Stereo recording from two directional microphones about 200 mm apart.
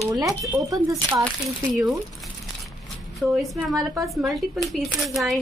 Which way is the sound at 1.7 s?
Centre (ahead or behind).